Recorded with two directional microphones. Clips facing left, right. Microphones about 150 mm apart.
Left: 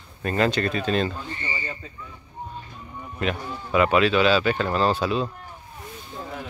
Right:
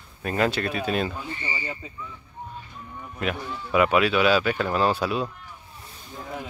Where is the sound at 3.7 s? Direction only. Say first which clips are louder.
Left 1 dB; 5° right (ahead or behind).